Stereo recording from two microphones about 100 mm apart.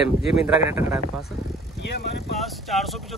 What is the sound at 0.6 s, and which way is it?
Speech, 20° right (ahead or behind).